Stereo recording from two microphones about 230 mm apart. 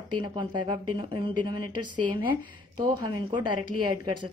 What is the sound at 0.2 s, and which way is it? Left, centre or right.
A woman's voice, centre.